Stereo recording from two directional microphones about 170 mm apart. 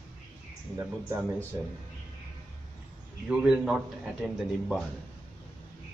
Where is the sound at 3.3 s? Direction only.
5° right (ahead or behind).